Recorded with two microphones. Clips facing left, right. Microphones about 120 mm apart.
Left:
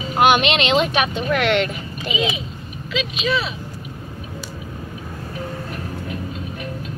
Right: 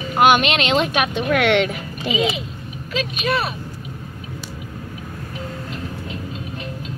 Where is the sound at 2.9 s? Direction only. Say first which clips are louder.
Even; 50° right (ahead or behind).